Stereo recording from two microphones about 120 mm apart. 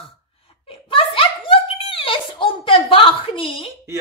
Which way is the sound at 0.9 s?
50° left (ahead or behind).